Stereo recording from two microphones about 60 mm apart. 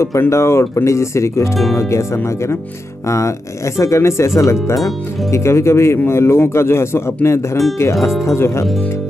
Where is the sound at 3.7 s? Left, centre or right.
Left.